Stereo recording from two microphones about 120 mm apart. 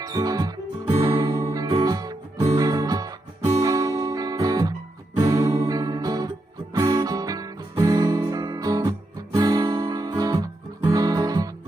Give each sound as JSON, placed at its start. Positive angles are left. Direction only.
{"t": 0.0, "sound": "music", "side_deg": -30}